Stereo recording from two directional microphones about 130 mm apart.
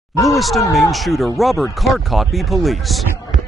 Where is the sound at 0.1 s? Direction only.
25° left (ahead or behind).